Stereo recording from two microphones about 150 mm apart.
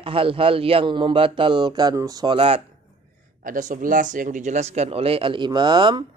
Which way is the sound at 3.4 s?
65° right (ahead or behind).